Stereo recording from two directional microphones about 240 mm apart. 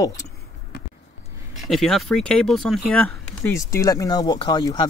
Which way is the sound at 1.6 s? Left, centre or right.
Centre.